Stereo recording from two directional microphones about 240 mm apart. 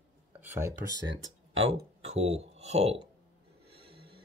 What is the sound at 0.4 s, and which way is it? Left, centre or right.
Speech, centre.